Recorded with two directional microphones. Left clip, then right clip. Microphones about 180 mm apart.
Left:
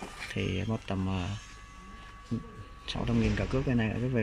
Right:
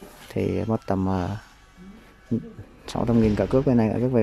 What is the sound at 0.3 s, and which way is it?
Speech, 20° right (ahead or behind).